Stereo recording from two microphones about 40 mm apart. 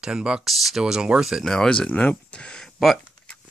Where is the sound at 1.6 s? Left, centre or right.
Left.